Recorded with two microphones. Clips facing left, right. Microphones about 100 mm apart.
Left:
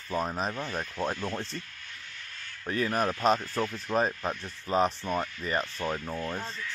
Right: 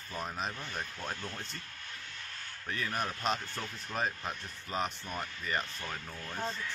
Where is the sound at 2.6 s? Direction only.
35° left (ahead or behind).